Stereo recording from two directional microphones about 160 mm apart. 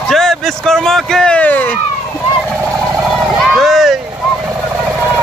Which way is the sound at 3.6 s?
Centre (ahead or behind).